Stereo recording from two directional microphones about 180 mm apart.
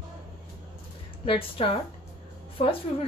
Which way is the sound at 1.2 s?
30° left (ahead or behind).